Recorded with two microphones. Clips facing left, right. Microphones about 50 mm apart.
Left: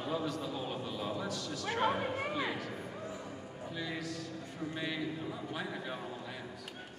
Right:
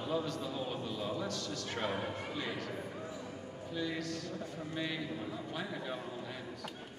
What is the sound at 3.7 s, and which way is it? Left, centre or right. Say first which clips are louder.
A man's voice: right 2 dB; centre.